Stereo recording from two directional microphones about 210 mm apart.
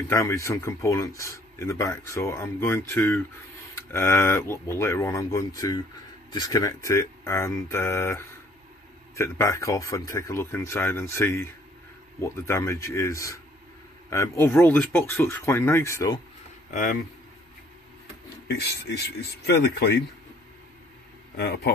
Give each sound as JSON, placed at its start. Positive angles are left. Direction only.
{"t": 0.1, "sound": "speech", "side_deg": 15}
{"t": 16.7, "sound": "speech", "side_deg": 40}
{"t": 18.5, "sound": "speech", "side_deg": 50}